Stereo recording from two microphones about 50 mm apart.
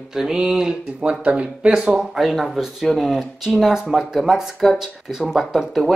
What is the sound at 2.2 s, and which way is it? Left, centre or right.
Speech, centre.